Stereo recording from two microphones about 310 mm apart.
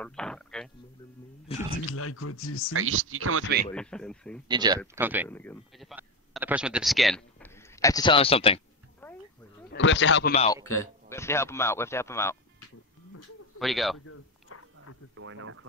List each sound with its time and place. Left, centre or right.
0.0 s speech: centre
1.5 s a man's voice: centre
1.9 s speech: left
2.7 s speech: right
3.7 s speech: centre
4.5 s speech: centre
5.3 s speech: centre
9.0 s a sound: centre
9.7 s a man's voice: left
10.3 s a man's voice: centre
10.6 s a man's voice: centre
13.6 s speech: centre
13.9 s a sound: left
15.1 s speech: right